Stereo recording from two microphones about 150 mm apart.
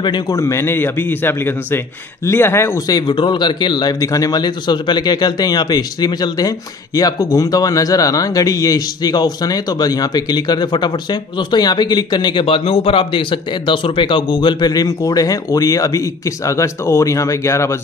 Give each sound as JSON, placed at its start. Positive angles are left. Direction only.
{"t": 0.0, "sound": "speech", "side_deg": 30}
{"t": 0.4, "sound": "speech", "side_deg": 20}
{"t": 3.0, "sound": "speech", "side_deg": 30}